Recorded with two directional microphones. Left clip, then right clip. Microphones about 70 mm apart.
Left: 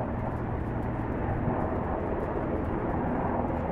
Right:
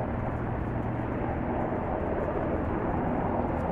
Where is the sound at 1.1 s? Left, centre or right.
Right.